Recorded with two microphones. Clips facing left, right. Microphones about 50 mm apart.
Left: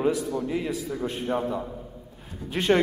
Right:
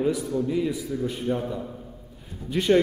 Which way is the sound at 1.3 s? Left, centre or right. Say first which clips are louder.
Even; left.